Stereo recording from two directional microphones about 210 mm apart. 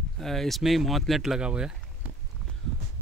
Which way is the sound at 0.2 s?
Centre (ahead or behind).